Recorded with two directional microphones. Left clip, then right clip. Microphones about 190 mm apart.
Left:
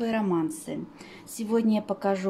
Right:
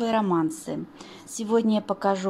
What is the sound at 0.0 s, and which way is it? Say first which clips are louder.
A woman's voice: right 4 dB; 15° right (ahead or behind).